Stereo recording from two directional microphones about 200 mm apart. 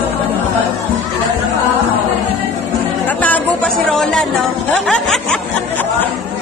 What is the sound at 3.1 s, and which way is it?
Chatter, 10° left (ahead or behind).